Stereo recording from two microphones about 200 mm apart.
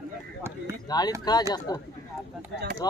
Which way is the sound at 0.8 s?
20° left (ahead or behind).